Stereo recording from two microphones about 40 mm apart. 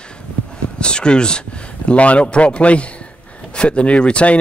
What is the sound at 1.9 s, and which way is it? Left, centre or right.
Speech, left.